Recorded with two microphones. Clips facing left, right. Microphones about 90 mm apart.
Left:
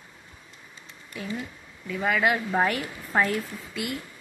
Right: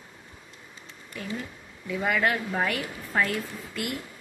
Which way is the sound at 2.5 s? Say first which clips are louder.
Left 3 dB; 25° left (ahead or behind).